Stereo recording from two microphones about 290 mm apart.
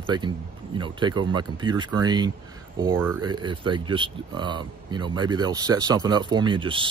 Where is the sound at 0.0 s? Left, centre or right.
Centre.